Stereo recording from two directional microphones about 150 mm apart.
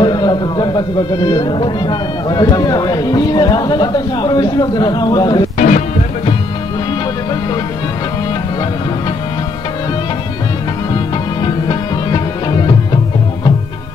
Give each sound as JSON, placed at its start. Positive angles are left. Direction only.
{"t": 0.0, "sound": "speech", "side_deg": 30}
{"t": 5.6, "sound": "music", "side_deg": 55}
{"t": 11.4, "sound": "music", "side_deg": 30}